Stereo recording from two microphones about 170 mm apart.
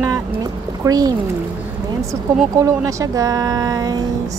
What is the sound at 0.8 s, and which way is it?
Speech, 20° right (ahead or behind).